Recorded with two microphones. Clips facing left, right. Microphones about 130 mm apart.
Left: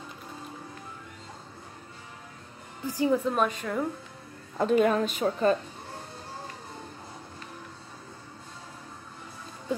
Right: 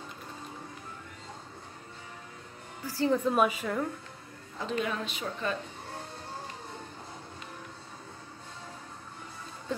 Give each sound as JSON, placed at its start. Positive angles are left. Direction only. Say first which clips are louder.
{"t": 2.9, "sound": "a woman's voice", "louder": "left 2 dB", "side_deg": 15}
{"t": 3.3, "sound": "a woman's voice", "louder": "right 1 dB", "side_deg": -5}
{"t": 4.6, "sound": "a woman's voice", "louder": "left 10 dB", "side_deg": 50}
{"t": 9.7, "sound": "speech", "louder": "left 4 dB", "side_deg": 10}